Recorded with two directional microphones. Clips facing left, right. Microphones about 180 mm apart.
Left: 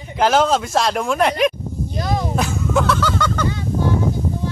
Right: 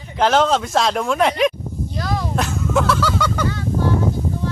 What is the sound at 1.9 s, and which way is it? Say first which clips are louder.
Speech: left 2 dB; 20° left (ahead or behind).